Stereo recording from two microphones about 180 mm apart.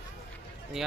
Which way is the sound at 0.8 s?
Centre (ahead or behind).